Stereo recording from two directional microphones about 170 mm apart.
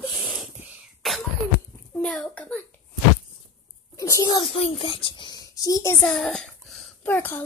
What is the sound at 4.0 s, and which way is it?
Speech, 20° left (ahead or behind).